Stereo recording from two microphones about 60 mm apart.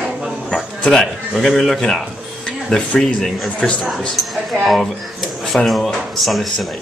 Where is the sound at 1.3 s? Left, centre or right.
Centre.